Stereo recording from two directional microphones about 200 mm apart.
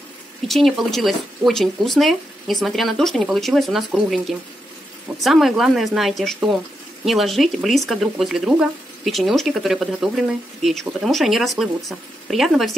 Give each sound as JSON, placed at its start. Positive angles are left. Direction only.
{"t": 0.5, "sound": "speech", "side_deg": 0}